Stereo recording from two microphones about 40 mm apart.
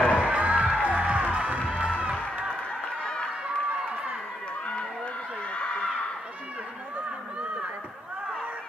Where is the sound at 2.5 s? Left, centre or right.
Left.